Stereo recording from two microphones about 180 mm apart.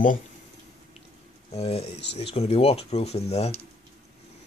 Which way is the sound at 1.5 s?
35° left (ahead or behind).